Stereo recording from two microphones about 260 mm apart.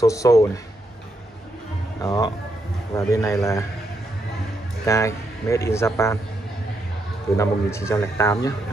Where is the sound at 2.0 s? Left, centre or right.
Centre.